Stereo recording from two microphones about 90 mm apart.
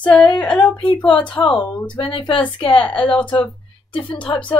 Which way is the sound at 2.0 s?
70° left (ahead or behind).